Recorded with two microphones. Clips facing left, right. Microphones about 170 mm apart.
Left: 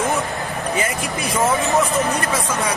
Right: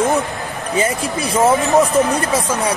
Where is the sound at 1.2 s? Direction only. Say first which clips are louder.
Right 5 dB; 35° right (ahead or behind).